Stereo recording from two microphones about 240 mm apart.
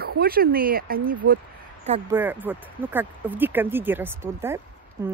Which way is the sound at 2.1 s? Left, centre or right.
Centre.